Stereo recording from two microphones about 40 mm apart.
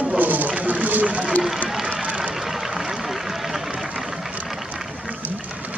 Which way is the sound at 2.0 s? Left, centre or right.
Right.